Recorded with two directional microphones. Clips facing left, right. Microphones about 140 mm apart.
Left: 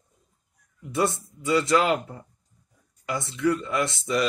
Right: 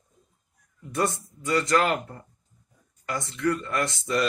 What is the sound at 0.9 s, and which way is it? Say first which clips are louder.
Speech: left 2 dB; 5° left (ahead or behind).